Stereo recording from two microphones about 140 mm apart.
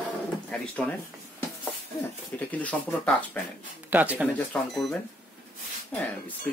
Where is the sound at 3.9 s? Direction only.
10° right (ahead or behind).